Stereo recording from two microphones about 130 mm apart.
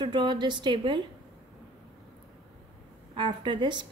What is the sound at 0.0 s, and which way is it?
A woman's voice, 35° right (ahead or behind).